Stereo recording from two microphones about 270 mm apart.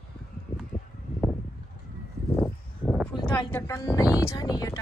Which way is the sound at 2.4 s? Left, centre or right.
Centre.